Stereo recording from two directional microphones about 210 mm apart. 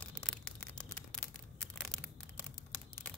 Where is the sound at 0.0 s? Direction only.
5° left (ahead or behind).